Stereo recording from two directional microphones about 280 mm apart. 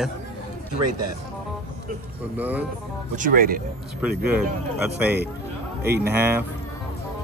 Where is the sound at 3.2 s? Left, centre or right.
Right.